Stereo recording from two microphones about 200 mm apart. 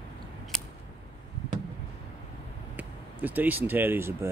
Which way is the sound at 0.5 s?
Centre (ahead or behind).